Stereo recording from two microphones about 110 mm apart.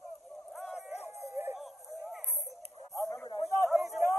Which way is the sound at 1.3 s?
20° right (ahead or behind).